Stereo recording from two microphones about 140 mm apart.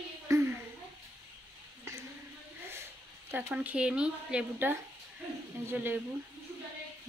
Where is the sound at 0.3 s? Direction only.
20° right (ahead or behind).